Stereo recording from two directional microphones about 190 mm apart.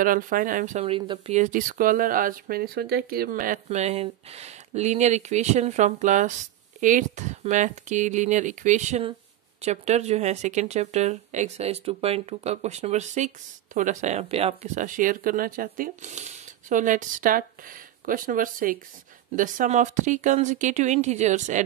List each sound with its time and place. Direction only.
0.0 s speech: 45° right (ahead or behind); by 1.3 s 25° right (ahead or behind)
1.3 s speech: 40° right (ahead or behind)